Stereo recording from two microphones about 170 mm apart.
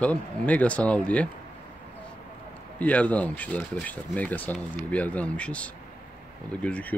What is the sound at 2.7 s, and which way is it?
A man's voice, 10° left (ahead or behind).